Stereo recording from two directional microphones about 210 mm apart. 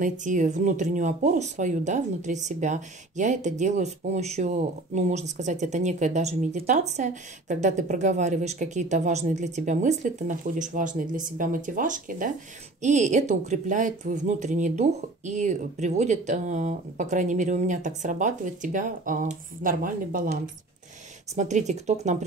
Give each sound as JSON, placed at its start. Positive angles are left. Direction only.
{"t": 0.0, "sound": "speech", "side_deg": -35}
{"t": 21.4, "sound": "speech", "side_deg": -35}